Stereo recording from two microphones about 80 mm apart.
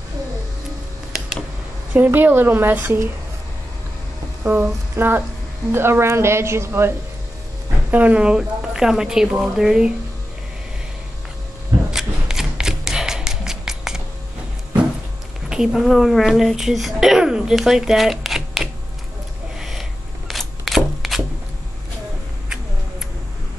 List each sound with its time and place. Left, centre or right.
2.1 s a woman's voice: right
4.4 s a sound: right
5.7 s speech: right
7.9 s a woman's voice: centre
11.9 s a sound: centre
15.5 s a child's voice: centre
19.6 s camera: centre